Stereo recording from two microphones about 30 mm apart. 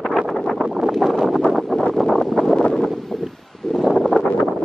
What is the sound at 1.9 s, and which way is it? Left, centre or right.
Wind noise, centre.